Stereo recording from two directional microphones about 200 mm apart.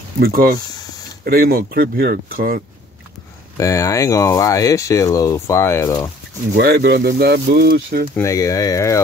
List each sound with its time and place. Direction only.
0.2 s speech: 50° right (ahead or behind)
3.5 s speech: 15° left (ahead or behind)
6.5 s speech: 55° right (ahead or behind)
8.2 s speech: 15° left (ahead or behind)